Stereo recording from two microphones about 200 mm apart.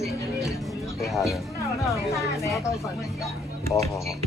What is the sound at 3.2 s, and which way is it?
Music, 15° left (ahead or behind).